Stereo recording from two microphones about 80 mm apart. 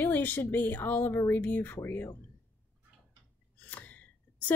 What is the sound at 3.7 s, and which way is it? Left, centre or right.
Gasp, centre.